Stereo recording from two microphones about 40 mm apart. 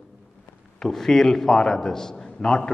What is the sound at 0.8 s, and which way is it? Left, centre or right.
A man's voice, centre.